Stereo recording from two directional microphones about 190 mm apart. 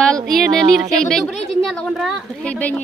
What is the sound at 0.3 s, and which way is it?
Speech, centre (ahead or behind).